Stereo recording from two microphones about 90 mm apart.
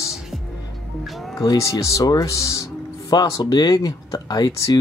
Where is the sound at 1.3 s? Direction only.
40° left (ahead or behind).